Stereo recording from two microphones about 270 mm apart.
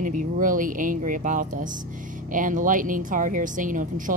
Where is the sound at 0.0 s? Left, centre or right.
Right.